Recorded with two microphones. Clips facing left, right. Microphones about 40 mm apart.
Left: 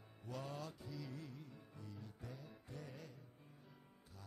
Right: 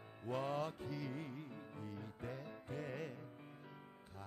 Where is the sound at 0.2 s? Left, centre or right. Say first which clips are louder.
Right 8 dB; right.